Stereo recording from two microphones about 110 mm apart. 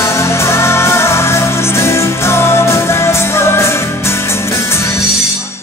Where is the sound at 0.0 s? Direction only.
25° left (ahead or behind).